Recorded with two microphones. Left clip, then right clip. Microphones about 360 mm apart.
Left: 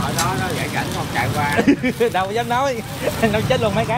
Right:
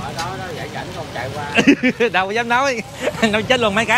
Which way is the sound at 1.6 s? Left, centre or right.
Right.